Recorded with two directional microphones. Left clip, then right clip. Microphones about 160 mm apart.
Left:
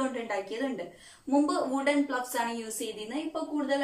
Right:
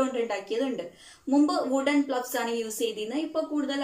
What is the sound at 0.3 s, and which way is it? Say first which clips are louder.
A woman's voice: right 3 dB; 10° right (ahead or behind).